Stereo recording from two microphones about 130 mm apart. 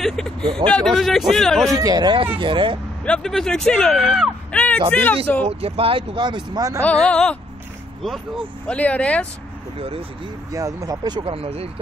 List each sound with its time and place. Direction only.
0.0 s speech: 5° left (ahead or behind)
1.8 s speech: 30° right (ahead or behind)
3.1 s speech: 5° left (ahead or behind)
4.5 s a sound: 10° left (ahead or behind)
4.9 s speech: 10° left (ahead or behind)
5.5 s speech: 45° right (ahead or behind); by 6.8 s 30° right (ahead or behind)
6.8 s speech: 10° left (ahead or behind)
8.6 s speech: 10° left (ahead or behind)
10.5 s speech: 25° right (ahead or behind); by 11.7 s 50° right (ahead or behind)